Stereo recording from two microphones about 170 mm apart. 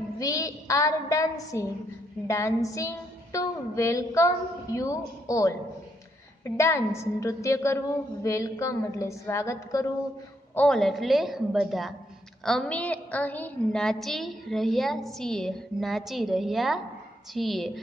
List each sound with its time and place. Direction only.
0.2 s a woman's voice: 20° left (ahead or behind)
10.5 s a woman's voice: 5° left (ahead or behind)